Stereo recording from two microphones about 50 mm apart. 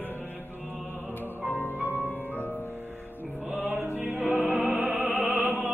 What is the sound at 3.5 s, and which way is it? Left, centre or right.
Music, right.